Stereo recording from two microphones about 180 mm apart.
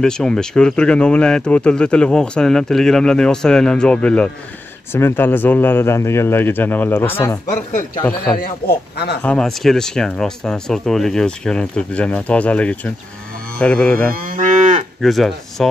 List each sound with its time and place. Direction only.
0.0 s speech: 5° left (ahead or behind)
8.4 s speech: 60° left (ahead or behind)
9.2 s speech: 5° left (ahead or behind)
14.1 s livestock: 50° right (ahead or behind)
15.0 s speech: centre (ahead or behind)